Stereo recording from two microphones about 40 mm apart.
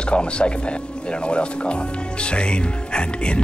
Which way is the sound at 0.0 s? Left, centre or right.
Left.